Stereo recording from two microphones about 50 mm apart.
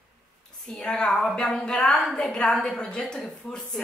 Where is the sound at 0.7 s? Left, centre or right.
Centre.